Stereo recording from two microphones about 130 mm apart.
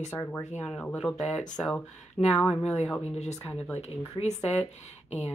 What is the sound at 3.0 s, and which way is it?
Speech, 60° left (ahead or behind).